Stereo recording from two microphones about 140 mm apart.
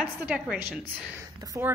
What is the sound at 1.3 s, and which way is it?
Speech, 25° right (ahead or behind).